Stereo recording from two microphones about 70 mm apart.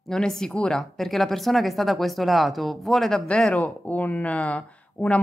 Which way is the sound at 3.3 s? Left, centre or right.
Centre.